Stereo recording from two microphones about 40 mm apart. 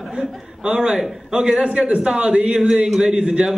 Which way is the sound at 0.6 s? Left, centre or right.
Right.